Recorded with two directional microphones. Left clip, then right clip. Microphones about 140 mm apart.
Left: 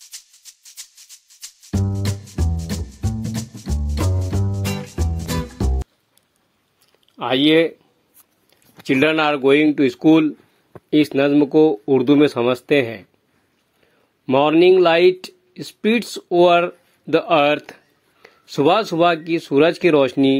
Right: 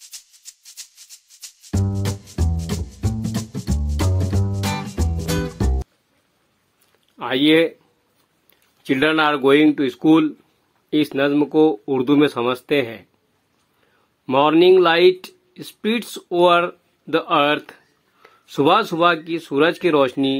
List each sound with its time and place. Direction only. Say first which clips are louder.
1.9 s music: even; 5° right (ahead or behind)
7.2 s speech: left 1 dB; 35° left (ahead or behind)
8.8 s speech: left 1 dB; 25° left (ahead or behind)
14.2 s speech: even; 20° left (ahead or behind)